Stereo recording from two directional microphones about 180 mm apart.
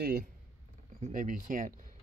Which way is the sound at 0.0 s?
55° right (ahead or behind).